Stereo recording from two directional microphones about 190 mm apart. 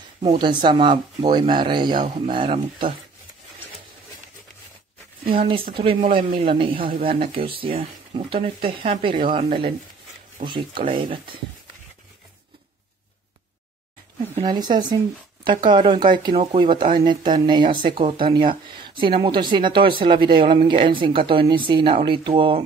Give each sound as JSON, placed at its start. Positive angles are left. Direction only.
{"t": 0.2, "sound": "speech", "side_deg": -25}
{"t": 5.4, "sound": "speech", "side_deg": -25}
{"t": 10.4, "sound": "speech", "side_deg": -40}
{"t": 10.8, "sound": "speech", "side_deg": -25}
{"t": 14.4, "sound": "speech", "side_deg": -25}